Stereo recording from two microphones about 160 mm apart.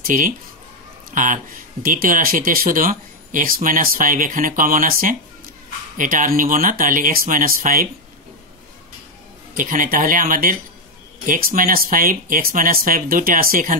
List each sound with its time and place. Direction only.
0.0 s speech: 60° right (ahead or behind)
9.5 s speech: 55° right (ahead or behind)